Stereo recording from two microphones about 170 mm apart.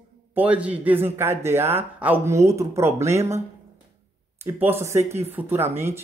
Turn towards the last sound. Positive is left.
turn(degrees=-15)  # may be behind; listen again after turning